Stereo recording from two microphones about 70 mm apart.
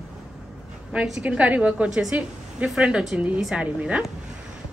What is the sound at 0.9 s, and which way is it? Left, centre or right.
A woman's voice, centre.